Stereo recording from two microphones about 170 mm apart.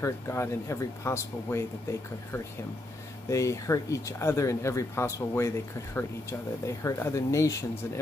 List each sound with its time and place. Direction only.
0.0 s speech: 15° left (ahead or behind)
6.6 s speech: 15° left (ahead or behind)